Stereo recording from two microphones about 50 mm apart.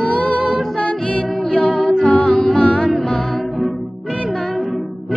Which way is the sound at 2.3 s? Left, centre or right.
Centre.